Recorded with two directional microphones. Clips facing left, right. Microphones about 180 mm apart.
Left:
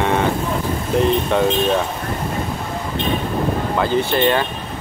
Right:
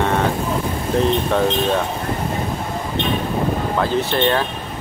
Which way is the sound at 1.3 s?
5° left (ahead or behind).